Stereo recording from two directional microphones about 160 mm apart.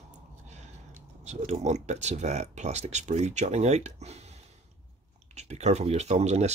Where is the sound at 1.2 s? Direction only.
45° right (ahead or behind).